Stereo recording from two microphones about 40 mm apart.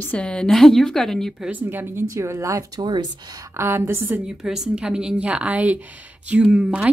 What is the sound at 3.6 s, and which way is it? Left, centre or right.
Speech, right.